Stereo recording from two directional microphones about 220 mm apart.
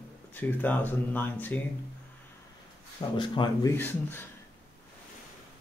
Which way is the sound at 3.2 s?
20° left (ahead or behind).